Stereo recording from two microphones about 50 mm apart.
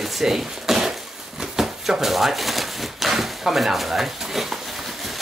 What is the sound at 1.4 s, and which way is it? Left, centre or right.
Speech, centre.